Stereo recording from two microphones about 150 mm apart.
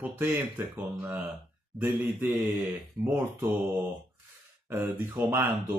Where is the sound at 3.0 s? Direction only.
25° right (ahead or behind).